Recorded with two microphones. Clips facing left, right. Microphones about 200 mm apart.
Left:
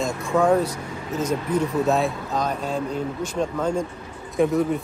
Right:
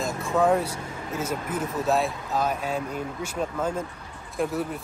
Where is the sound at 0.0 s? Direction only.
Centre (ahead or behind).